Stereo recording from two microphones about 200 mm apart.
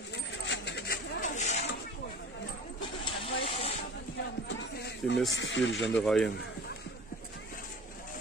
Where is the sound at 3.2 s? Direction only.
25° left (ahead or behind).